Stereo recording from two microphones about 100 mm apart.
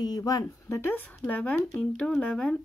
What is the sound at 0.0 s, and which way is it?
Speech, 40° left (ahead or behind).